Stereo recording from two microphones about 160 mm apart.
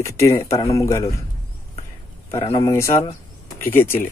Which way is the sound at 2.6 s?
15° left (ahead or behind).